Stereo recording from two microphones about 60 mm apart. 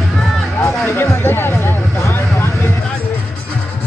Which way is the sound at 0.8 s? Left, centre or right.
Left.